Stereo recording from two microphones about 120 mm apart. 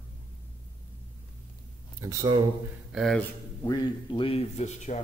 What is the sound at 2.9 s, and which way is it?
Speech, 5° left (ahead or behind).